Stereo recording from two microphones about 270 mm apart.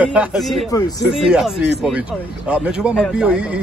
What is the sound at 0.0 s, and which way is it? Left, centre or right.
Speech, centre.